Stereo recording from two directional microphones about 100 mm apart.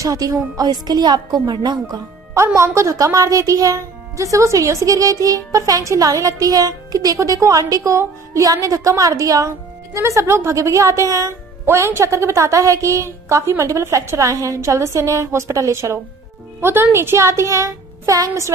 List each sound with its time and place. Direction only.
0.0 s speech: 35° right (ahead or behind)
2.3 s a woman's voice: 30° right (ahead or behind)